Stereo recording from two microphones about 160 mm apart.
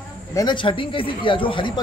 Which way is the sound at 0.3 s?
25° left (ahead or behind).